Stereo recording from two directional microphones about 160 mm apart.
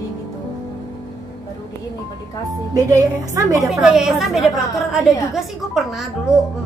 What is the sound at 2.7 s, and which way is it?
Speech, 20° right (ahead or behind).